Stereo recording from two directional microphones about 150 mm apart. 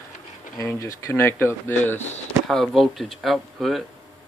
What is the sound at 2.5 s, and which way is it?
Speech, centre (ahead or behind).